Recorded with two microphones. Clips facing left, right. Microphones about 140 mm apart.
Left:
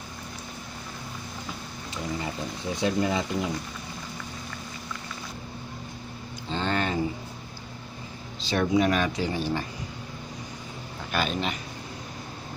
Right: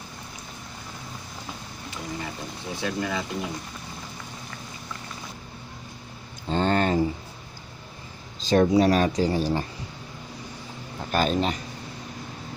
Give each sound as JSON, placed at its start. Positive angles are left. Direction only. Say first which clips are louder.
{"t": 2.7, "sound": "speech", "louder": "left 3 dB", "side_deg": 20}
{"t": 6.5, "sound": "a sound", "louder": "right 5 dB", "side_deg": -40}
{"t": 8.5, "sound": "speech", "louder": "right 4 dB", "side_deg": -35}
{"t": 11.1, "sound": "speech", "louder": "right 5 dB", "side_deg": -40}